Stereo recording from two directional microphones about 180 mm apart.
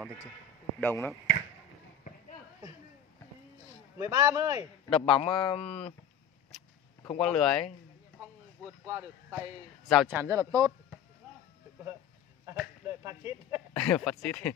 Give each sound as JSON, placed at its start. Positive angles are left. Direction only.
{"t": 0.7, "sound": "speech", "side_deg": 10}
{"t": 4.0, "sound": "speech", "side_deg": -20}
{"t": 4.8, "sound": "a man's voice", "side_deg": 5}
{"t": 5.1, "sound": "speech", "side_deg": 30}
{"t": 7.1, "sound": "speech", "side_deg": 5}
{"t": 8.6, "sound": "speech", "side_deg": -15}
{"t": 12.8, "sound": "speech", "side_deg": -15}
{"t": 13.7, "sound": "speech", "side_deg": 5}